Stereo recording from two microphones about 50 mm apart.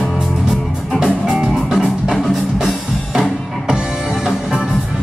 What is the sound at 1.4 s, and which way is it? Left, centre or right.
Music, centre.